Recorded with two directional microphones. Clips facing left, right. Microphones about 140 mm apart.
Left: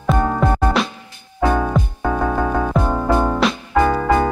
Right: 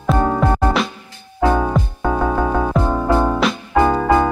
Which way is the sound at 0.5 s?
15° left (ahead or behind).